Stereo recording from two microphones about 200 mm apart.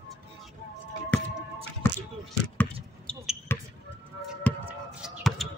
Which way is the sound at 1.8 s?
10° left (ahead or behind).